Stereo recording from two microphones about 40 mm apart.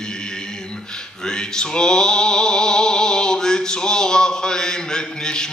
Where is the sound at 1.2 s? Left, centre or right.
Centre.